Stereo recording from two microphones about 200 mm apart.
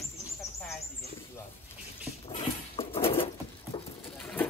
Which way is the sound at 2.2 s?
30° left (ahead or behind).